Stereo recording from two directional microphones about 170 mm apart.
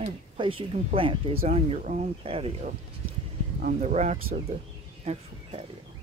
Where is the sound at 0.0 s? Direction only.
30° right (ahead or behind).